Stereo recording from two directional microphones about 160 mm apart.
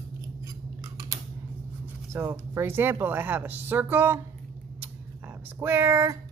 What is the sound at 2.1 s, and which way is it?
A woman's voice, 15° right (ahead or behind).